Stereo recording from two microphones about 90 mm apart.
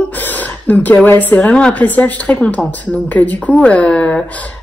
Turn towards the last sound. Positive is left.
turn(degrees=15)  # may be behind; listen again after turning